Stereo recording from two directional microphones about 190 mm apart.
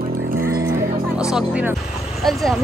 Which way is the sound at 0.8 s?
5° right (ahead or behind).